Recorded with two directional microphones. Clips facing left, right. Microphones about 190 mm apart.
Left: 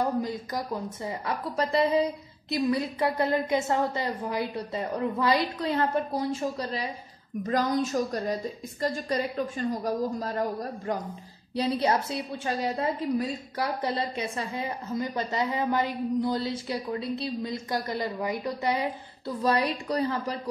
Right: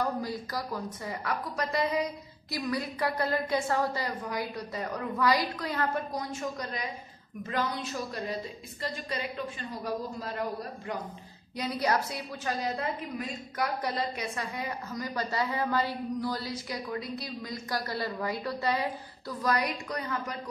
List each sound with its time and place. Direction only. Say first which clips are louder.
0.0 s a woman's voice: left 4 dB; 20° left (ahead or behind); by 11.0 s 45° left (ahead or behind)
11.5 s a woman's voice: left 4 dB; 30° left (ahead or behind)
19.4 s a woman's voice: left 4 dB; 30° left (ahead or behind)